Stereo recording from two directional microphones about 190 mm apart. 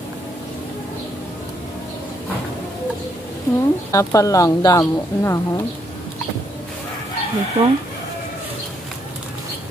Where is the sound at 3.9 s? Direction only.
15° left (ahead or behind).